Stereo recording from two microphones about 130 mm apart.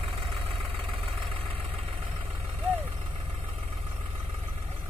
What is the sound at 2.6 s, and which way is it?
Vehicle, 50° right (ahead or behind).